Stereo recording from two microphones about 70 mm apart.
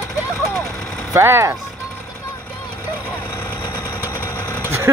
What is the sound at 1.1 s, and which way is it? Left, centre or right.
Speech, right.